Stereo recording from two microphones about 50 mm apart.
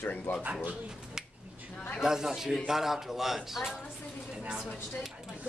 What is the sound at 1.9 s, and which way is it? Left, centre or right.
Speech, centre.